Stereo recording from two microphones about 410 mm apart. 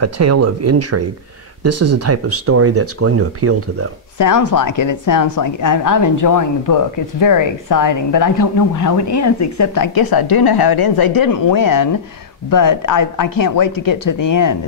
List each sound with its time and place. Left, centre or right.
0.0 s speech: right
4.2 s a woman's voice: left